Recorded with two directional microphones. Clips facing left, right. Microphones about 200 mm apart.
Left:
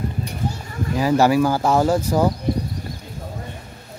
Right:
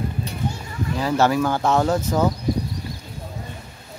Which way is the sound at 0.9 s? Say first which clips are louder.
Left 3 dB; 10° left (ahead or behind).